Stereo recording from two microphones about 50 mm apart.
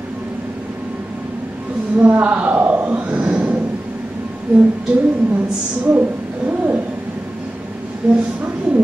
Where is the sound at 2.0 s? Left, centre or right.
Right.